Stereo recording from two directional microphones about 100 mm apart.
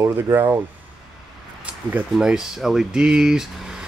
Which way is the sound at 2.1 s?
5° right (ahead or behind).